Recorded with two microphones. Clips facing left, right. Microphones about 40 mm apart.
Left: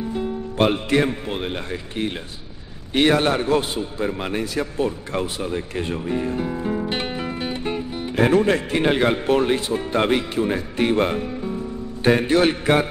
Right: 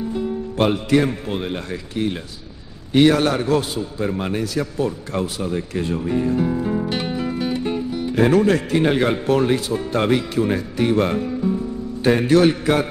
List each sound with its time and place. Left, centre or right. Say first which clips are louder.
0.2 s speech: even; left
6.4 s music: right 3 dB; centre
6.9 s music: right 2 dB; left
8.3 s speech: right 1 dB; left
10.8 s music: right 1 dB; left
11.1 s speech: right 4 dB; centre
12.2 s speech: right 3 dB; left